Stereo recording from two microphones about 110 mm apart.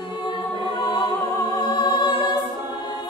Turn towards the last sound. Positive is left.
turn(degrees=45)  # may be behind; listen again after turning